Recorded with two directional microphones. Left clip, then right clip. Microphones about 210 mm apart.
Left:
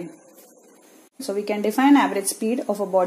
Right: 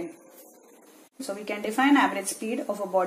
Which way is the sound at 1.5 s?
50° left (ahead or behind).